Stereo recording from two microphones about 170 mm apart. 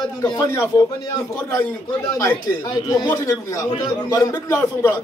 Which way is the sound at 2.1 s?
25° left (ahead or behind).